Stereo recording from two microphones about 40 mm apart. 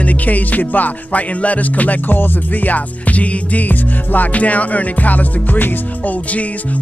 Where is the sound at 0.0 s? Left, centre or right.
Left.